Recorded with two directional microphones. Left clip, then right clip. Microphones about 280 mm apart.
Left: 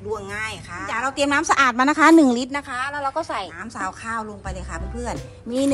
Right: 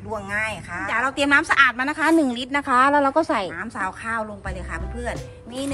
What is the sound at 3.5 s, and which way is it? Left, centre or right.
A woman's voice, centre.